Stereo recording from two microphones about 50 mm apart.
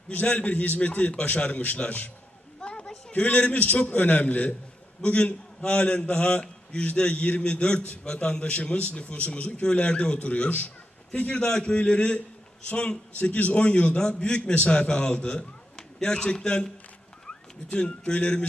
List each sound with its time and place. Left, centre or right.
0.1 s a man's voice: left
2.6 s a sound: left
3.1 s a man's voice: left
11.4 s a man's voice: centre